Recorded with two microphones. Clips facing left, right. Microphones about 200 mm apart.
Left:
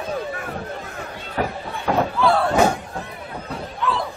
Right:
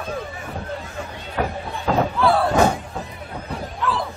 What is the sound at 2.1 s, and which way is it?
Slam, centre (ahead or behind).